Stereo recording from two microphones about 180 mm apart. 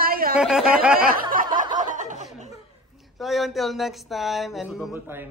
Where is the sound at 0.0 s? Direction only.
55° right (ahead or behind).